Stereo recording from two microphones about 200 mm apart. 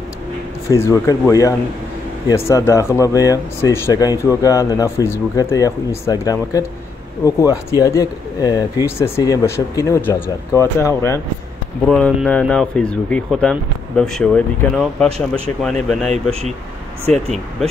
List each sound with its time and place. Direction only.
0.7 s speech: 15° left (ahead or behind)
16.1 s speech: 35° right (ahead or behind)